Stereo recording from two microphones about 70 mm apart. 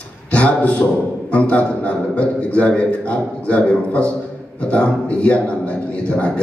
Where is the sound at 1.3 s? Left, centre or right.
Centre.